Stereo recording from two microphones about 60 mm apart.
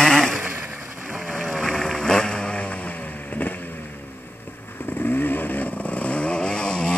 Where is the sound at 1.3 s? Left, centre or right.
Centre.